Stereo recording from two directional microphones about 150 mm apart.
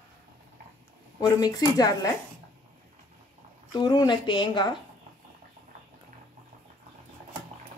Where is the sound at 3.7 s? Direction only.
30° left (ahead or behind).